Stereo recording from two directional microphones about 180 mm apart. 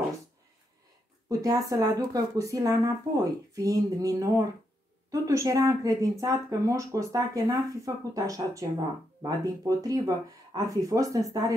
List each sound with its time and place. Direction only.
1.4 s speech: 20° right (ahead or behind)